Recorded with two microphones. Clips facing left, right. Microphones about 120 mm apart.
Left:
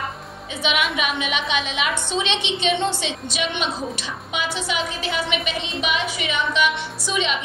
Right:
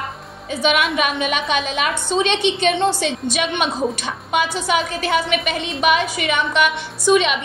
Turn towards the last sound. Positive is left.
turn(degrees=-60)  # may be behind; listen again after turning